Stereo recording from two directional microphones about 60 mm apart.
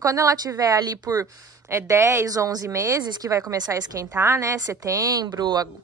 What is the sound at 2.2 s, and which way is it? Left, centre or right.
Speech, right.